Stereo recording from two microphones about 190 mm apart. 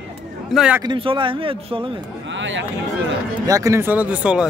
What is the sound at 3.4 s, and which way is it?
Speech, 15° right (ahead or behind).